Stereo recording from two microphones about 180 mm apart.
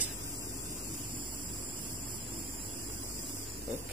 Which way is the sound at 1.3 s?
25° right (ahead or behind).